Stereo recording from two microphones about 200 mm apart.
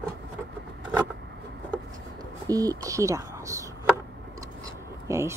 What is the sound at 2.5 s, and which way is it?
Speech, 15° right (ahead or behind).